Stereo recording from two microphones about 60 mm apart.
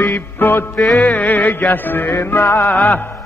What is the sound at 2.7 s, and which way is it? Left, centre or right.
Music, left.